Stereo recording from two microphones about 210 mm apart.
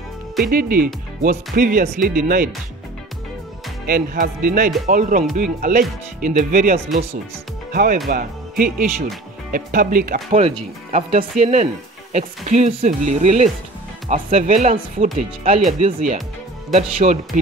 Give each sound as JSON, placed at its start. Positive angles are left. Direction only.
{"t": 0.5, "sound": "speech", "side_deg": -40}
{"t": 3.8, "sound": "speech", "side_deg": -45}